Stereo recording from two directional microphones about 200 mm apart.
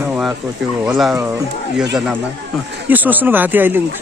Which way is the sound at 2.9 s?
10° right (ahead or behind).